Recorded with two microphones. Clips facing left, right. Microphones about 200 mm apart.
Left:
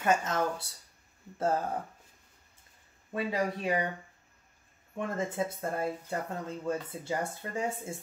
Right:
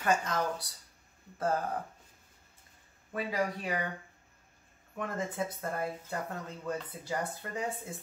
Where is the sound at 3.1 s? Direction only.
25° left (ahead or behind).